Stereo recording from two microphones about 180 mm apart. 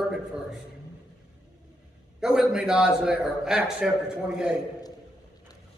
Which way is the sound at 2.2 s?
5° right (ahead or behind).